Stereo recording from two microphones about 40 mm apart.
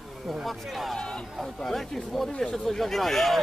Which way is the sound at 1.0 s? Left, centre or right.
Centre.